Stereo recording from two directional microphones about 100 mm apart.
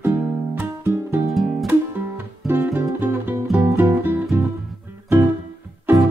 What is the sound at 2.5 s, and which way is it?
Music, 20° right (ahead or behind).